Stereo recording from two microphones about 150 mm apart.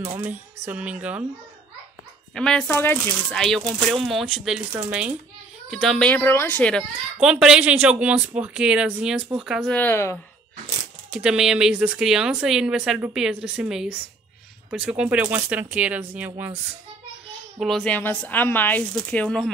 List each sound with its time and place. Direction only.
0.0 s speech: 15° right (ahead or behind)
2.3 s a woman's voice: 5° left (ahead or behind)
7.2 s speech: 5° right (ahead or behind)
9.7 s speech: 10° left (ahead or behind)
11.1 s a woman's voice: 5° right (ahead or behind)
17.6 s speech: centre (ahead or behind)